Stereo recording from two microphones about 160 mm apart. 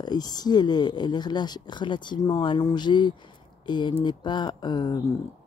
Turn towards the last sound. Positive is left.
turn(degrees=25)  # may be behind; listen again after turning